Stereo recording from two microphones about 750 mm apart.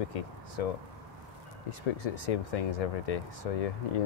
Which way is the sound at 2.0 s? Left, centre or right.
Left.